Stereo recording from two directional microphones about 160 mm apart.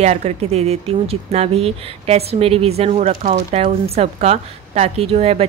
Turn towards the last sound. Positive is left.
turn(degrees=-40)  # may be behind; listen again after turning